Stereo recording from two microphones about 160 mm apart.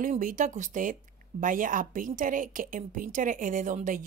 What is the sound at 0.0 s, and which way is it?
A woman's voice, 55° right (ahead or behind).